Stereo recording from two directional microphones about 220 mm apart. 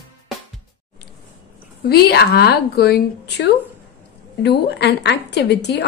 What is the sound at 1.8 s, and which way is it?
A woman's voice, 45° left (ahead or behind).